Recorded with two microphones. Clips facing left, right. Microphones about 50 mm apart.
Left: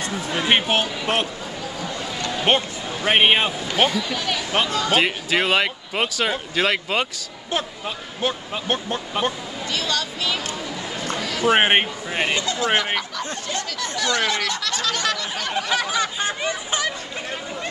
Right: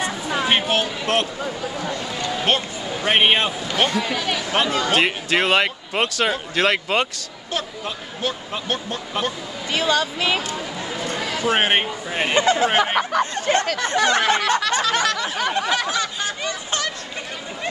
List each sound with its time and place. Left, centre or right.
0.4 s speech: centre
2.1 s a sound: centre
3.0 s speech: centre
4.1 s speech: centre
8.2 s speech: left
9.7 s speech: centre
10.5 s a sound: centre
11.4 s speech: centre
12.1 s speech: centre
12.4 s a sound: right
14.6 s speech: centre
15.7 s speech: centre
16.0 s speech: centre